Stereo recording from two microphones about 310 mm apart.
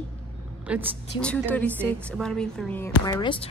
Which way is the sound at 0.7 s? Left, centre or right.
Centre.